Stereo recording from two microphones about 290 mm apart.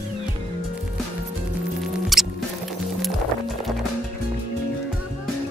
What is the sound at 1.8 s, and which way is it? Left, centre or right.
Rodents, centre.